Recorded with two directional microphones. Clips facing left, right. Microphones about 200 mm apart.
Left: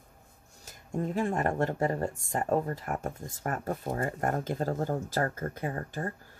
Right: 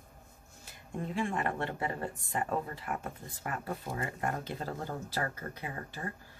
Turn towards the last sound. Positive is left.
turn(degrees=45)  # may be behind; listen again after turning